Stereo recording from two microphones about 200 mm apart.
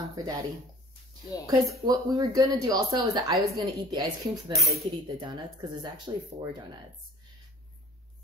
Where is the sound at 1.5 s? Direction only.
20° right (ahead or behind).